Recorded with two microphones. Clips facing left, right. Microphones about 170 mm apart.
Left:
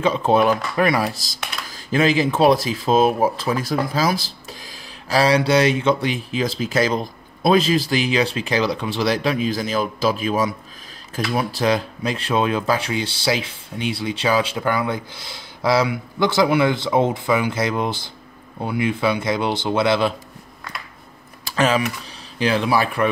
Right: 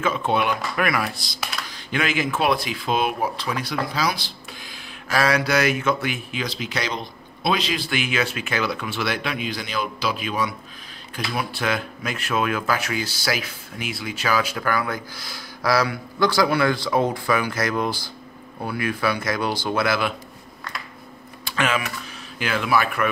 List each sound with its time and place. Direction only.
0.0 s speech: 35° left (ahead or behind)
5.1 s speech: 30° left (ahead or behind)
21.5 s speech: 35° left (ahead or behind)